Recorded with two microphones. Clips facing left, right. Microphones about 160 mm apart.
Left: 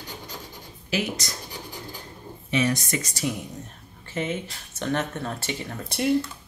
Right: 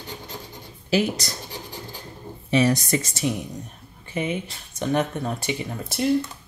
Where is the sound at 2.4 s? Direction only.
35° right (ahead or behind).